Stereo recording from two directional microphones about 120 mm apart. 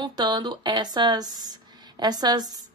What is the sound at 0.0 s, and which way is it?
A woman's voice, 35° right (ahead or behind).